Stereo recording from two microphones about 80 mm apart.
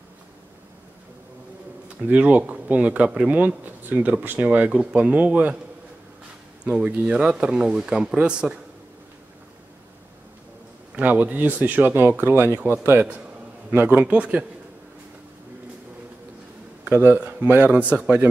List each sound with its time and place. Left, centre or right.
2.0 s speech: centre
6.8 s speech: centre
11.0 s speech: centre
16.9 s speech: right
17.6 s speech: centre